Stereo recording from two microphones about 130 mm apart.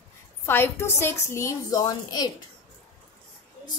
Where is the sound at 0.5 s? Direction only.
20° left (ahead or behind).